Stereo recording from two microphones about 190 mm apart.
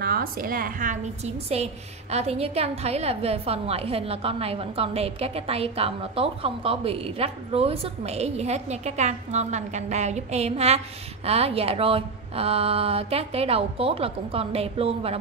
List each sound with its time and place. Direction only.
0.0 s a woman's voice: 50° right (ahead or behind); by 15.1 s 30° right (ahead or behind)